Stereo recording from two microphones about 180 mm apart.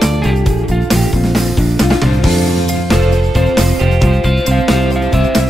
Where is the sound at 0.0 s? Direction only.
Centre (ahead or behind).